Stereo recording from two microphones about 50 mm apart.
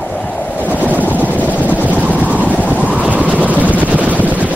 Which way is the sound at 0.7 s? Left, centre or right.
Left.